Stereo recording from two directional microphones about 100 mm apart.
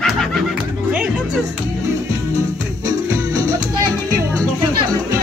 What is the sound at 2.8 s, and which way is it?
Music, 40° right (ahead or behind).